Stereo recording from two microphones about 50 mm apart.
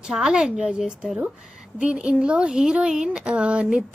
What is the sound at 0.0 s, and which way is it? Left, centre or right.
A woman's voice, centre.